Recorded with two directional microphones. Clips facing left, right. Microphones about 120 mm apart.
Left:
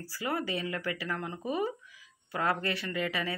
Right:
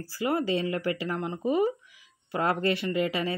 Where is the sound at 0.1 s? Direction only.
25° right (ahead or behind).